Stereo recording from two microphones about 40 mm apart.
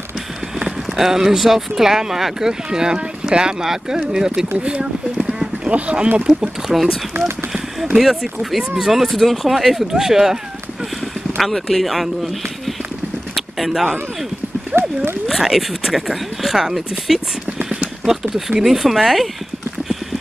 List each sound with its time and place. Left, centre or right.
0.6 s speech: centre
5.7 s speech: right
6.7 s speech: centre
11.3 s speech: centre
13.3 s vehicle: centre
14.7 s horse: right
15.2 s speech: centre
18.6 s speech: centre